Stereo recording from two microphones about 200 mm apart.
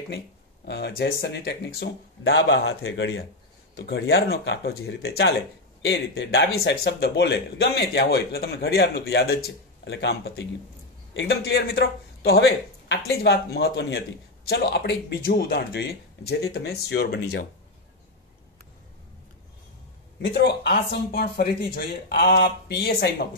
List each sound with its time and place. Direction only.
0.7 s speech: 55° left (ahead or behind)
20.2 s speech: 55° left (ahead or behind)